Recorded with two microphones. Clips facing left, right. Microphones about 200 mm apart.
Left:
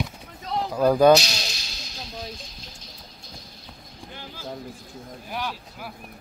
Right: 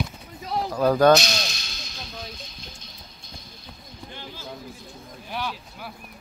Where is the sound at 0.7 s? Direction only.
10° left (ahead or behind).